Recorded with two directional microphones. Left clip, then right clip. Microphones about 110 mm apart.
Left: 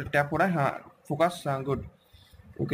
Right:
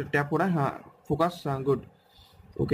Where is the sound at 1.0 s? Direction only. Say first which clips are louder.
Left 1 dB; 25° right (ahead or behind).